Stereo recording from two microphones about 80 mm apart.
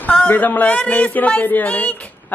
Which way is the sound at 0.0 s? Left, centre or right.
Centre.